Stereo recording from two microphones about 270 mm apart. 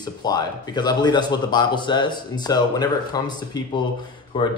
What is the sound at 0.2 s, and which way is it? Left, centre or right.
Speech, centre.